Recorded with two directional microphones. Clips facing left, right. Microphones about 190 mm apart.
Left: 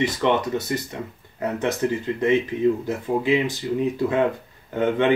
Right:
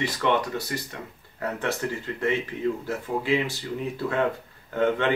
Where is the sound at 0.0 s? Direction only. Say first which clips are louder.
Left 4 dB; 20° left (ahead or behind).